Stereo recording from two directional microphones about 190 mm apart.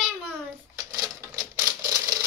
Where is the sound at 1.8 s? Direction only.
20° right (ahead or behind).